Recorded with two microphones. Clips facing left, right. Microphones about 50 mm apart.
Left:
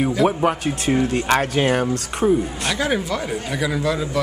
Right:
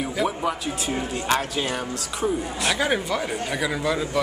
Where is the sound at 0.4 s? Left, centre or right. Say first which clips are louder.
Left 6 dB; left.